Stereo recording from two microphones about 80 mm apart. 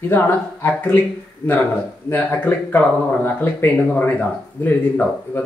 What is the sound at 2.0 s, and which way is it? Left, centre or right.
Speech, left.